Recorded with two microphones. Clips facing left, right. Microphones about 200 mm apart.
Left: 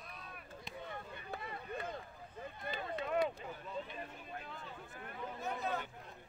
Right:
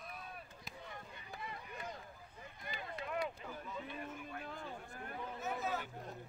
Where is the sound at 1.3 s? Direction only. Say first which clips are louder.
Left 3 dB; 55° left (ahead or behind).